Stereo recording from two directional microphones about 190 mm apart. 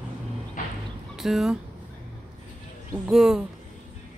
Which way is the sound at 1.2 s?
Centre (ahead or behind).